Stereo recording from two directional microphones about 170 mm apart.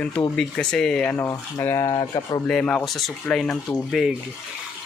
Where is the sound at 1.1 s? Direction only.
15° left (ahead or behind).